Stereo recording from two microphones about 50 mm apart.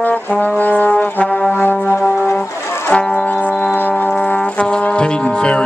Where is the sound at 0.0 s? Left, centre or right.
Left.